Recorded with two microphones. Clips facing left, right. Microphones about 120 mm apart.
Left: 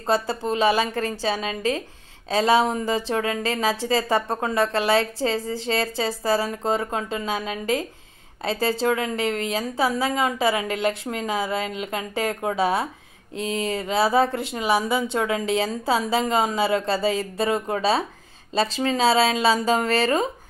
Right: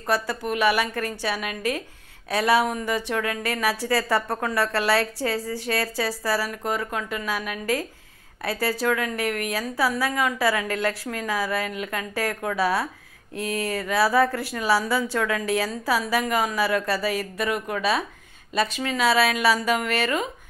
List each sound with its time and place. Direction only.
0.0 s speech: 25° left (ahead or behind)